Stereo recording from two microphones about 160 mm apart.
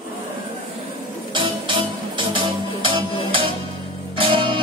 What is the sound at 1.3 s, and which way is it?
Music, 30° right (ahead or behind).